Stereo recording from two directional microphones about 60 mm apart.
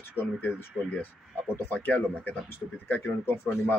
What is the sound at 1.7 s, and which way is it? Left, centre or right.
Speech, left.